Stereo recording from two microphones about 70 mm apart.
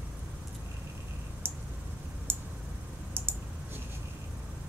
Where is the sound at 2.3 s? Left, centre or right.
Right.